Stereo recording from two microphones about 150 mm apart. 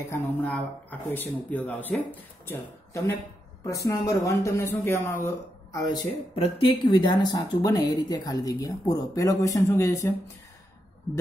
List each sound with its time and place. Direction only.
0.1 s speech: 10° left (ahead or behind)
5.9 s speech: 40° left (ahead or behind); by 10.1 s 20° left (ahead or behind)